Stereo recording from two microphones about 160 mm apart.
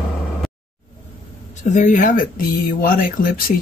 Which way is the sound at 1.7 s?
55° left (ahead or behind).